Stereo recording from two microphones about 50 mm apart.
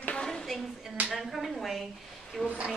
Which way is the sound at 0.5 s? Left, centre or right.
Centre.